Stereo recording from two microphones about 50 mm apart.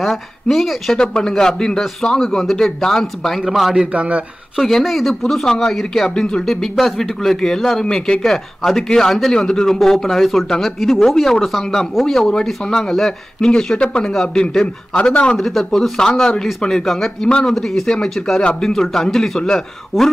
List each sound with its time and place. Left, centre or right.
0.0 s speech: centre
0.9 s a man's voice: centre
3.3 s a man's voice: centre
3.7 s a man's voice: right
4.6 s a man's voice: centre
7.8 s a man's voice: centre
8.2 s a man's voice: centre
12.2 s a man's voice: centre
15.0 s speech: left
15.3 s a man's voice: centre